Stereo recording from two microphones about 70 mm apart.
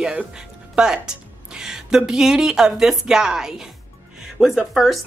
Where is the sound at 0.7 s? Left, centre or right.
Centre.